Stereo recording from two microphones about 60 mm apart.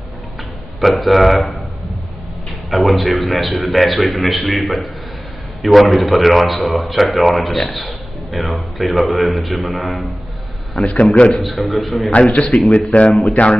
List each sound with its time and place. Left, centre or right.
0.7 s a man's voice: centre
2.7 s a man's voice: centre
11.0 s a man's voice: centre
11.6 s a man's voice: centre
12.1 s a man's voice: left